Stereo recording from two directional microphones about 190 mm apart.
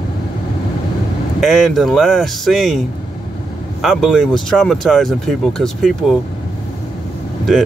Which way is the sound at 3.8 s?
Centre (ahead or behind).